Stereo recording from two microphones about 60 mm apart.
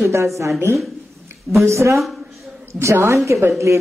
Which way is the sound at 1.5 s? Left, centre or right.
Right.